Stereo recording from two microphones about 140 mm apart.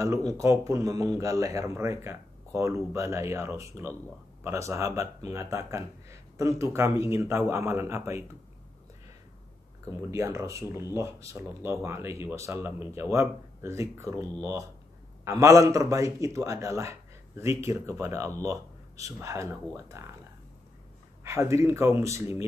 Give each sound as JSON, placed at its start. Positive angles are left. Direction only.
{"t": 0.4, "sound": "speech", "side_deg": -20}
{"t": 9.8, "sound": "speech", "side_deg": -20}
{"t": 15.4, "sound": "speech", "side_deg": -25}
{"t": 21.2, "sound": "a man's voice", "side_deg": -20}